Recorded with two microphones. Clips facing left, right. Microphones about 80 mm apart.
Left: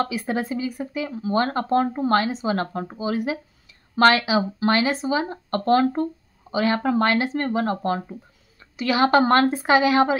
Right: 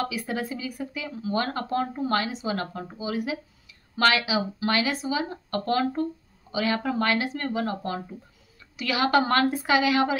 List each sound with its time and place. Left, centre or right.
0.0 s speech: left